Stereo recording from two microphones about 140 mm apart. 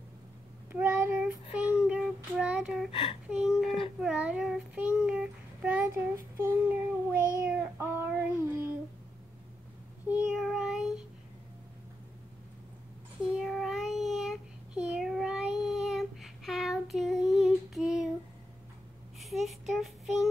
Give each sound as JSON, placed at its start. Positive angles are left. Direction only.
{"t": 0.7, "sound": "child singing", "side_deg": -15}
{"t": 2.9, "sound": "speech", "side_deg": 40}
{"t": 3.3, "sound": "a sound", "side_deg": -5}
{"t": 4.0, "sound": "child singing", "side_deg": -5}
{"t": 10.0, "sound": "child singing", "side_deg": -5}
{"t": 13.4, "sound": "child singing", "side_deg": 0}
{"t": 19.1, "sound": "child singing", "side_deg": 0}